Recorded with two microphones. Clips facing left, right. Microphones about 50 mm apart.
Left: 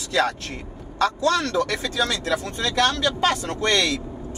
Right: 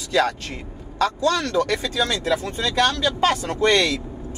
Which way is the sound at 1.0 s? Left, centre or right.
Left.